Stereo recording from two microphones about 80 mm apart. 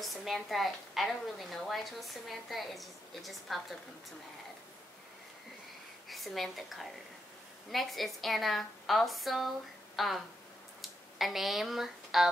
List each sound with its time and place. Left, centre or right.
0.0 s a woman's voice: centre
6.0 s a woman's voice: centre